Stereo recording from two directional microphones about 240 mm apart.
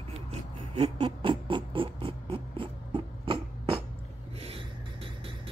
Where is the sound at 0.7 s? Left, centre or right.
Right.